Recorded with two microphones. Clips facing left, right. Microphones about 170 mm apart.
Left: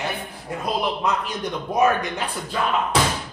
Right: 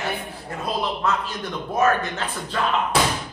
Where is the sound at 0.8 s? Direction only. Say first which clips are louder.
Even; 15° left (ahead or behind).